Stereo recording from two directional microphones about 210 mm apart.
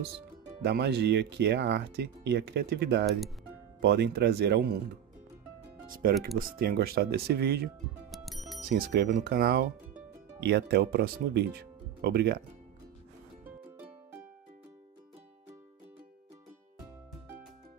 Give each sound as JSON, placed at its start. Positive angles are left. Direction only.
{"t": 0.6, "sound": "speech", "side_deg": -50}
{"t": 6.3, "sound": "speech", "side_deg": -45}
{"t": 8.1, "sound": "music", "side_deg": 0}
{"t": 8.6, "sound": "speech", "side_deg": -45}